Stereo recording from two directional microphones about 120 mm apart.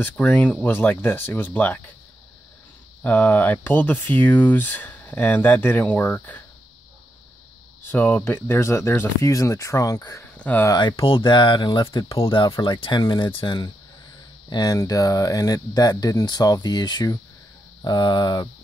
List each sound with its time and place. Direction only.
0.0 s speech: 15° left (ahead or behind)
3.0 s speech: 15° left (ahead or behind)
7.9 s speech: 15° left (ahead or behind)
10.3 s speech: 15° left (ahead or behind)
10.7 s speech: 40° left (ahead or behind)
14.5 s speech: 35° left (ahead or behind)